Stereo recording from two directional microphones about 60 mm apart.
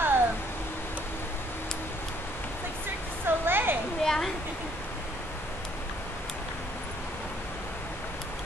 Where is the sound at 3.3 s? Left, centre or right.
Right.